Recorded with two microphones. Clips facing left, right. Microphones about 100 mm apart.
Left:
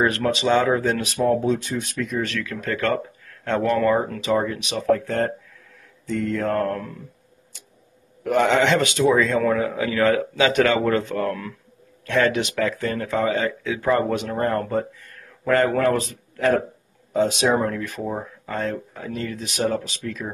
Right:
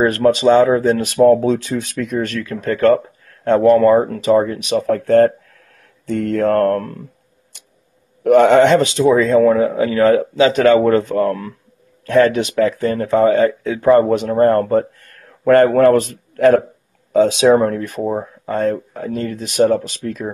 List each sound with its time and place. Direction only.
0.0 s speech: 40° right (ahead or behind)
1.0 s speech: 70° right (ahead or behind); by 2.1 s 90° right
2.1 s speech: 45° right (ahead or behind); by 7.0 s 65° right (ahead or behind)
8.2 s speech: 65° right (ahead or behind)
8.7 s speech: 35° right (ahead or behind); by 16.6 s 60° right (ahead or behind)
17.1 s speech: 90° right
17.6 s speech: 45° right (ahead or behind)